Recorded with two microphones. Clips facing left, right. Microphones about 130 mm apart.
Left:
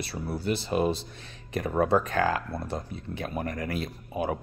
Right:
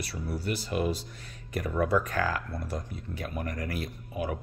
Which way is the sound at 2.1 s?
25° left (ahead or behind).